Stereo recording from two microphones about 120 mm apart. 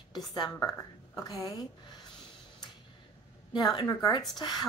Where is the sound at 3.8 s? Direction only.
35° left (ahead or behind).